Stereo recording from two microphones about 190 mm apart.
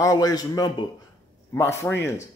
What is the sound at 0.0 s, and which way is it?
A man's voice, 20° left (ahead or behind).